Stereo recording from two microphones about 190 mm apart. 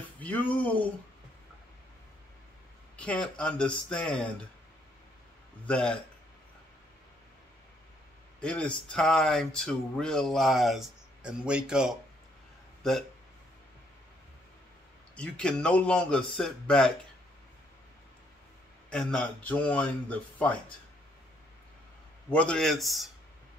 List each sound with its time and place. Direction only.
0.2 s speech: 10° left (ahead or behind)
3.0 s speech: 5° left (ahead or behind)
5.7 s speech: 5° left (ahead or behind)
8.4 s speech: 5° left (ahead or behind)
15.1 s speech: 5° left (ahead or behind)
18.9 s speech: 5° left (ahead or behind)
22.3 s speech: 5° left (ahead or behind)